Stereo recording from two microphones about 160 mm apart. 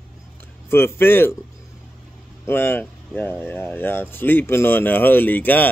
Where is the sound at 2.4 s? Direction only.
15° left (ahead or behind).